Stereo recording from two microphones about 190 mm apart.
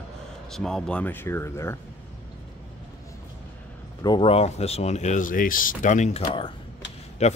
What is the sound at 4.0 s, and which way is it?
Speech, 25° left (ahead or behind).